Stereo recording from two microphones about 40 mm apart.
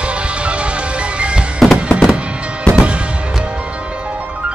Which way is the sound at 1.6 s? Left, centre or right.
Centre.